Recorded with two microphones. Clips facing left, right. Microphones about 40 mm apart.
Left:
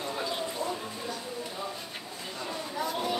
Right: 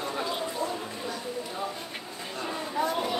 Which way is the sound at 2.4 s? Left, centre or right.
Right.